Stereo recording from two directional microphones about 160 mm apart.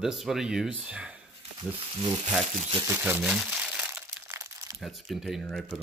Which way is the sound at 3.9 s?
10° right (ahead or behind).